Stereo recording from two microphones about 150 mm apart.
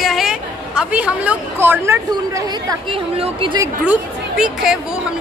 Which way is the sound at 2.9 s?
40° right (ahead or behind).